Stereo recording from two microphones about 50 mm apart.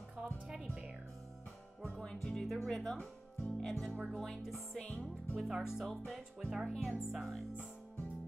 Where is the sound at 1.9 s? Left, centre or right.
Centre.